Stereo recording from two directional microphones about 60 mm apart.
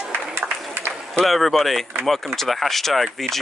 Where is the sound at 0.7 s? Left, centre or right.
Right.